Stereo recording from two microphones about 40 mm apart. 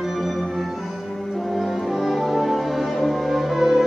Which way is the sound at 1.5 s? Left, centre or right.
Centre.